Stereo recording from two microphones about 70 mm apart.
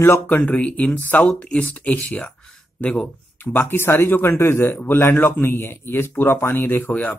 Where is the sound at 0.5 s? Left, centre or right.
Left.